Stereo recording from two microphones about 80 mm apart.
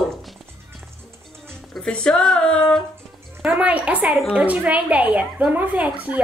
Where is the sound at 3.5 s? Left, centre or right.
Centre.